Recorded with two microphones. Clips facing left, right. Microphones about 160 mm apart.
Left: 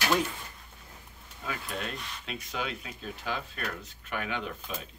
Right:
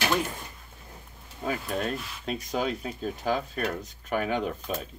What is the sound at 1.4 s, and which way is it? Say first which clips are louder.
Speech: right 7 dB; 40° right (ahead or behind).